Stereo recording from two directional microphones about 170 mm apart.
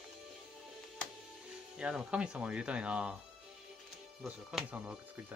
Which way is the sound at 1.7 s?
5° right (ahead or behind).